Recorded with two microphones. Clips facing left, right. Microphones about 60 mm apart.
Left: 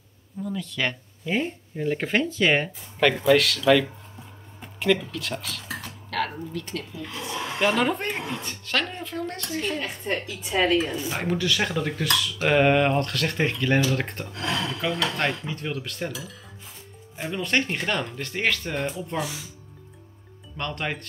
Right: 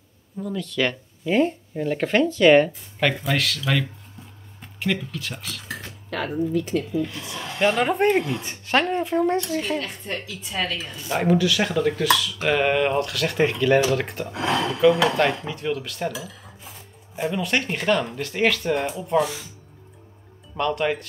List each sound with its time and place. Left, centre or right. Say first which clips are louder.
0.6 s speech: right 5 dB; centre
6.0 s speech: right 4 dB; centre
7.3 s a woman's voice: left 4 dB; centre
7.6 s speech: right 4 dB; centre
8.5 s speech: right 6 dB; right
9.8 s a woman's voice: left 1 dB; centre
11.1 s speech: right 5 dB; centre
14.2 s speech: right 5 dB; centre
14.8 s speech: right 12 dB; centre
20.5 s speech: right 7 dB; centre